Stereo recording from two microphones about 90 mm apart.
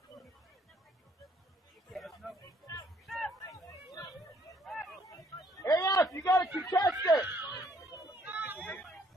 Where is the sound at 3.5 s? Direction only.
45° left (ahead or behind).